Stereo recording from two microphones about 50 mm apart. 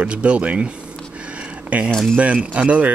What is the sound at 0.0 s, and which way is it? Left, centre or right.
Speech, right.